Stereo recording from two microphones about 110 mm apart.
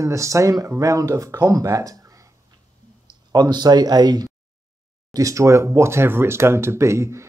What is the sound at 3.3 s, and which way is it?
Speech, 40° right (ahead or behind).